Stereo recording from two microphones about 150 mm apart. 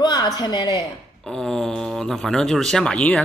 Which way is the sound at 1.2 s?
5° left (ahead or behind).